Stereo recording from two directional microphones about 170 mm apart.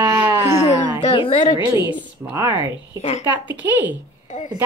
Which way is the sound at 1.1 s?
30° left (ahead or behind).